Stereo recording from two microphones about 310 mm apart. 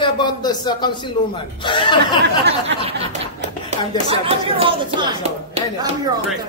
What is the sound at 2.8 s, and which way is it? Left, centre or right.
Speech, centre.